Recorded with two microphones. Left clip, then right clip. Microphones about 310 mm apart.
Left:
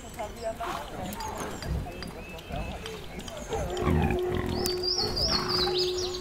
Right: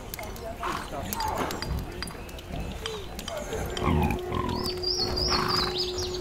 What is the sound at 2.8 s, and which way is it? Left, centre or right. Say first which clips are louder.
Livestock: right 4 dB; right.